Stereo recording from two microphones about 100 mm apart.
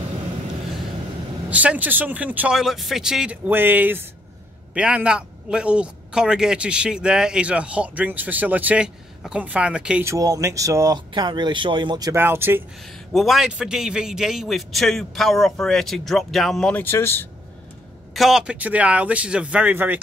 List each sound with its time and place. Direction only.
1.5 s a man's voice: 15° right (ahead or behind)
2.5 s a man's voice: centre (ahead or behind)
3.4 s a man's voice: 20° right (ahead or behind)
10.0 s speech: 35° right (ahead or behind)
11.1 s speech: 50° right (ahead or behind)
12.1 s speech: 25° right (ahead or behind)
13.1 s a man's voice: centre (ahead or behind)
16.7 s speech: 25° left (ahead or behind)
18.1 s a man's voice: 5° right (ahead or behind); by 20.0 s 20° right (ahead or behind)